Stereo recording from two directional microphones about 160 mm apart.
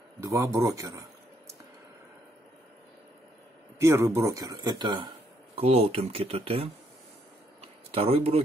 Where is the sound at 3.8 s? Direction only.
15° right (ahead or behind).